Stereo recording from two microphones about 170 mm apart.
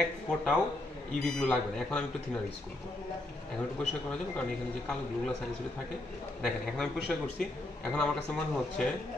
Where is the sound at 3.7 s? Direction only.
5° left (ahead or behind).